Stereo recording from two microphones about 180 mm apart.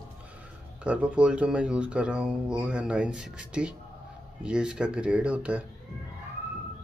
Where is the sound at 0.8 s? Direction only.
5° right (ahead or behind).